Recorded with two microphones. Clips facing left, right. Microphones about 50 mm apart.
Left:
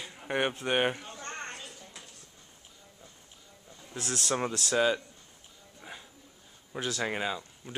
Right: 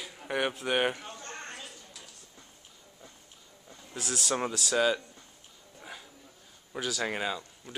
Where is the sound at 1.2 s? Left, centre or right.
Left.